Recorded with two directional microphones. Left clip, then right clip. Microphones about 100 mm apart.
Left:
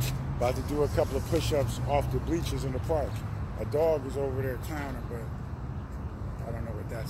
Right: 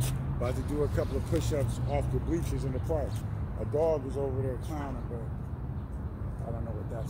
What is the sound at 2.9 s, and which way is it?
Speech, 5° right (ahead or behind).